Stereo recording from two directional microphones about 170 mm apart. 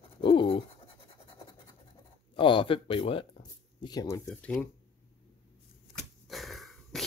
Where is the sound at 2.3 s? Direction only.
30° left (ahead or behind).